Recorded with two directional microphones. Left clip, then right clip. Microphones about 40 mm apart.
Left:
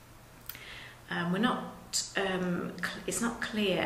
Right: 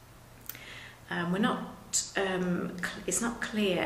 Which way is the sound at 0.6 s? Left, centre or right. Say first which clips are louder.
Even; centre.